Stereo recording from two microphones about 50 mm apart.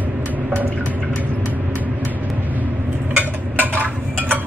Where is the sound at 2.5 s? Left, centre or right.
Right.